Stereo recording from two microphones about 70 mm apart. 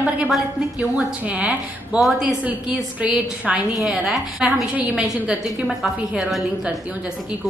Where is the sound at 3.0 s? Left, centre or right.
Centre.